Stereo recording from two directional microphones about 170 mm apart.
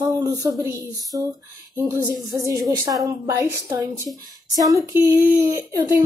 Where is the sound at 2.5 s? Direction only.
20° right (ahead or behind).